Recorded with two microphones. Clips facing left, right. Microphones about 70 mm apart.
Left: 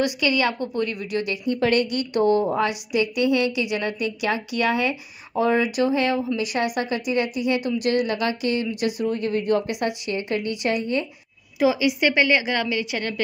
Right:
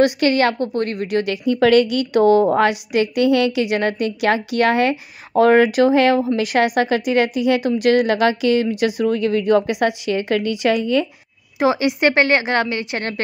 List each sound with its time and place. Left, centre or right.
0.0 s a woman's voice: right
2.5 s a woman's voice: right
6.3 s a woman's voice: right
11.6 s a woman's voice: right